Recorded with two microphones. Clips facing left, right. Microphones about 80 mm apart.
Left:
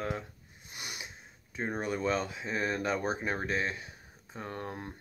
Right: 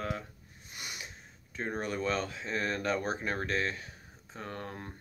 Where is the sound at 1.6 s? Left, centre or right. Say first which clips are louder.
Left 1 dB; centre.